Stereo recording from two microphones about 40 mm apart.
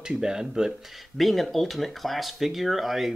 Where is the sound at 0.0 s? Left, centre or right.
Centre.